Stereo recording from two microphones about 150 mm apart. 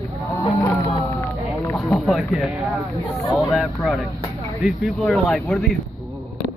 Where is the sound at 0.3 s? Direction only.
20° left (ahead or behind).